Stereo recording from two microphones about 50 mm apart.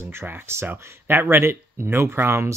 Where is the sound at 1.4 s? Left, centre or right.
Right.